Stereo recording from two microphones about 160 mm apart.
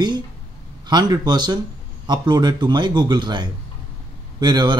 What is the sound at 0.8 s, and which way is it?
Speech, 25° right (ahead or behind).